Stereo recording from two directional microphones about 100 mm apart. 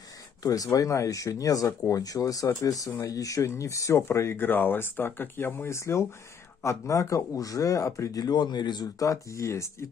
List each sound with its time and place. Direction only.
0.4 s speech: 35° left (ahead or behind)